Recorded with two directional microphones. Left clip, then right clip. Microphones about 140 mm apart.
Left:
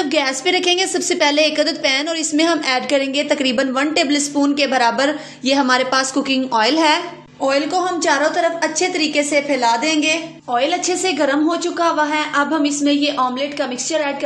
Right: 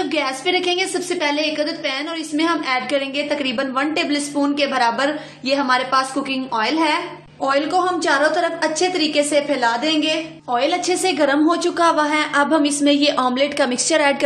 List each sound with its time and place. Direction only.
0.1 s a woman's voice: 30° left (ahead or behind)
7.4 s a woman's voice: 20° left (ahead or behind); by 11.3 s 5° left (ahead or behind)
11.4 s a woman's voice: 10° right (ahead or behind); by 14.1 s 40° right (ahead or behind)